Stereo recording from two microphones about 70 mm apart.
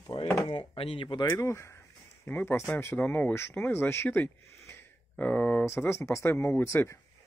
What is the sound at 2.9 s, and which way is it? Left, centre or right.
Speech, left.